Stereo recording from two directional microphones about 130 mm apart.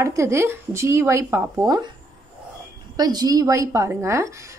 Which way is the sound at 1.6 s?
35° right (ahead or behind).